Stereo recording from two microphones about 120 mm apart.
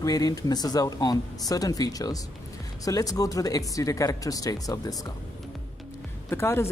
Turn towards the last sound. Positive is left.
turn(degrees=20)  # may be behind; listen again after turning